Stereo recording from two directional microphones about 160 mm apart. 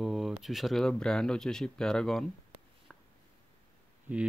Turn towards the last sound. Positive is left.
turn(degrees=-10)  # may be behind; listen again after turning